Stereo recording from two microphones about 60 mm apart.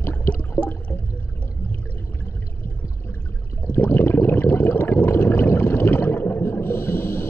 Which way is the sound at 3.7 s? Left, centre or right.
Left.